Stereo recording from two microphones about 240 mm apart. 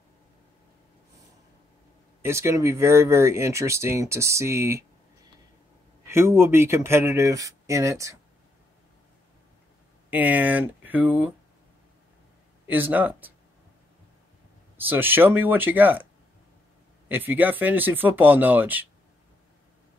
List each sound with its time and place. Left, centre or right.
2.2 s speech: centre
6.0 s speech: centre
10.0 s speech: centre
12.6 s speech: centre
14.8 s speech: centre
17.1 s speech: centre